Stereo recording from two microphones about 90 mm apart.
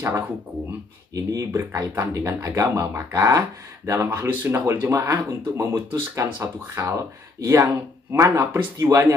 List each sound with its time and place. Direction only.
1.1 s speech: 40° right (ahead or behind)